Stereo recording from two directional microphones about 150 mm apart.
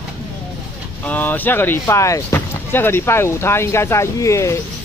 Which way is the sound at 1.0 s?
10° left (ahead or behind).